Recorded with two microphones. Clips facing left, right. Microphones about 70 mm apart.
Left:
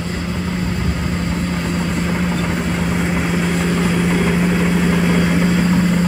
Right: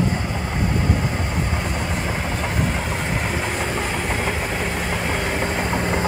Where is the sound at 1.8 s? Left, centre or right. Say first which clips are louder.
Left 5 dB; centre.